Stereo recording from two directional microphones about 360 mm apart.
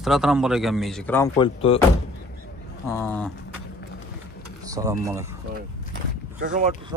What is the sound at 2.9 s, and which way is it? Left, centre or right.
Speech, centre.